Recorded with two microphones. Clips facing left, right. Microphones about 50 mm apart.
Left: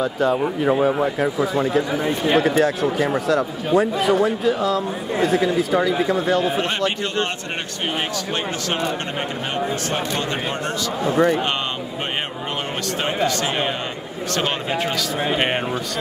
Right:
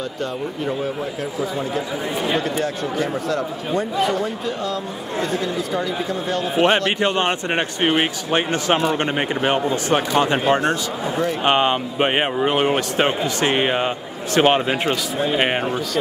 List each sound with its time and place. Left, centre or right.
0.0 s a man's voice: centre
7.8 s speech: right
10.6 s a man's voice: centre
11.4 s speech: right
15.3 s a man's voice: centre